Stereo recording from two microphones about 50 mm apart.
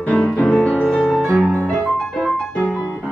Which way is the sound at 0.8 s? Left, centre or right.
Centre.